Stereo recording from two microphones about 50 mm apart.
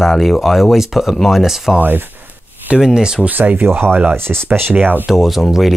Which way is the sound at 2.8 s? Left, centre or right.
Centre.